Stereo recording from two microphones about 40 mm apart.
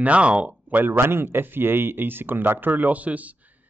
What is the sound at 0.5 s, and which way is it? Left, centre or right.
Speech, right.